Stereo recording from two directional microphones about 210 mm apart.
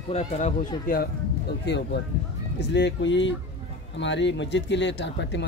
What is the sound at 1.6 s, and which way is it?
Speech, 55° left (ahead or behind).